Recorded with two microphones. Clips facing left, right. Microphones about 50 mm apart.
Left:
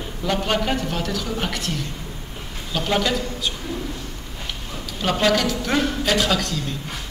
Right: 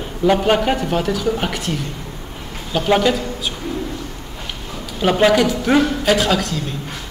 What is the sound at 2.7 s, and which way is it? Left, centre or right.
Speech, centre.